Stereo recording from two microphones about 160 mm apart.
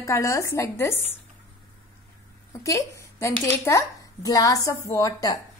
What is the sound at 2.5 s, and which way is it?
Speech, 20° left (ahead or behind).